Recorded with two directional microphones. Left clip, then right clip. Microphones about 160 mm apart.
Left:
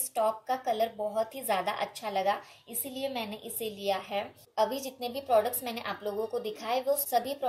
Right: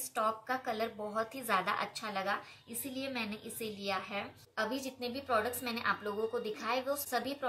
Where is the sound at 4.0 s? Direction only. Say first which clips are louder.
Left 5 dB; 5° left (ahead or behind).